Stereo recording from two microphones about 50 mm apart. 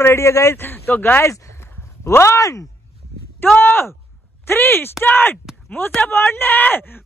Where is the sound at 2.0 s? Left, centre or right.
Left.